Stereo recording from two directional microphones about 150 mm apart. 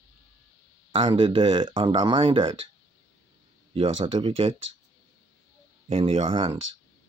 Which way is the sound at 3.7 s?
40° right (ahead or behind).